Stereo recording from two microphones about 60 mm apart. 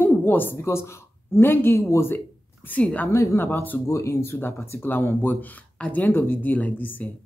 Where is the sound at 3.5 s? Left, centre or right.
Left.